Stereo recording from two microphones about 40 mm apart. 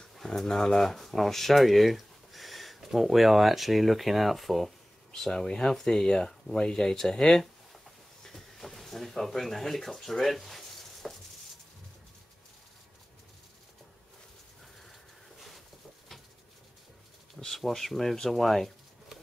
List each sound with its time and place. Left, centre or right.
0.4 s speech: centre
5.3 s speech: centre
8.2 s a sound: centre
17.6 s speech: centre